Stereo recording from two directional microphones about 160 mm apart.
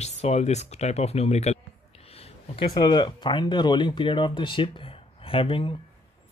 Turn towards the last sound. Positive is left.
turn(degrees=35)  # may be behind; listen again after turning